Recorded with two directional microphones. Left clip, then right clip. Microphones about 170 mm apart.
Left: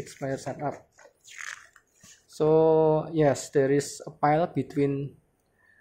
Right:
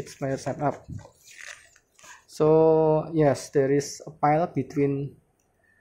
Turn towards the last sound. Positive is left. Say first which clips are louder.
# right 1 dB
turn(degrees=-5)  # may be behind; listen again after turning